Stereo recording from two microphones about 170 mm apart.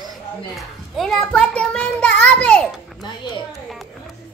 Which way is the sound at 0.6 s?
Centre (ahead or behind).